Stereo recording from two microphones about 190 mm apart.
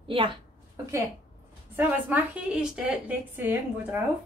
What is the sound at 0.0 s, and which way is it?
Speech, 25° right (ahead or behind).